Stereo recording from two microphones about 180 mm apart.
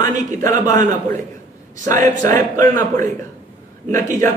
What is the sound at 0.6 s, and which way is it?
Speech, 20° left (ahead or behind).